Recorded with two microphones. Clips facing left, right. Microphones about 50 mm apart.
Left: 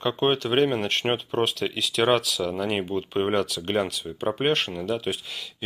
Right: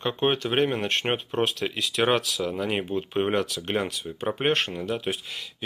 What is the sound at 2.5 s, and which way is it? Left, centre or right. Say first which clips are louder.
Speech: even; centre.